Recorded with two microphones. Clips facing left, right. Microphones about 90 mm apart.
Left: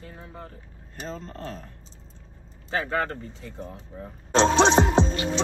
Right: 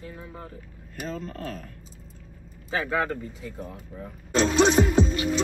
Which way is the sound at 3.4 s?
5° right (ahead or behind).